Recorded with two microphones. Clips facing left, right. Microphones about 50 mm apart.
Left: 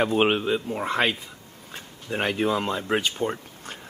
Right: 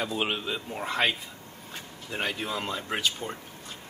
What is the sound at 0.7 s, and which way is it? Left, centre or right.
Speech, centre.